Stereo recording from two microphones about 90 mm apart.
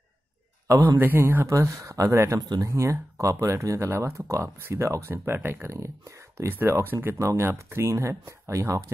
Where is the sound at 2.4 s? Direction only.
45° right (ahead or behind).